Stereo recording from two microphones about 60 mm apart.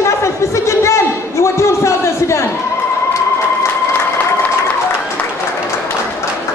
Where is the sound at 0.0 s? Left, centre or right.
Left.